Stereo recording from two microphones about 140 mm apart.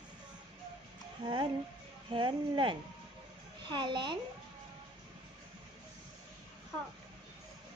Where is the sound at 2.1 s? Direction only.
35° right (ahead or behind).